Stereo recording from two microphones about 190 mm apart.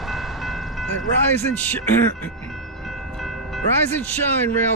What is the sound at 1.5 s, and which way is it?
Speech, 10° left (ahead or behind).